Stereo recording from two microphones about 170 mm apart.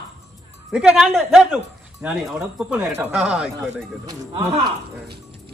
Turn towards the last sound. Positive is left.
turn(degrees=-25)  # may be behind; listen again after turning